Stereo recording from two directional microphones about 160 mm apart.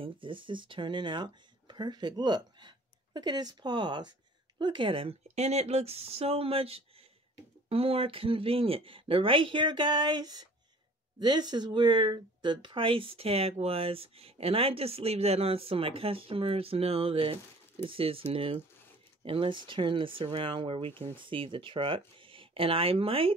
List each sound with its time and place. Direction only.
0.0 s speech: 30° right (ahead or behind)